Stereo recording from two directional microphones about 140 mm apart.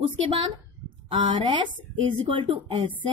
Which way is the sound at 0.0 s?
40° right (ahead or behind).